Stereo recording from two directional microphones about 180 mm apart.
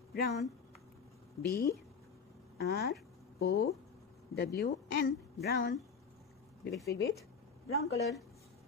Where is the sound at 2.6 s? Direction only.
60° left (ahead or behind).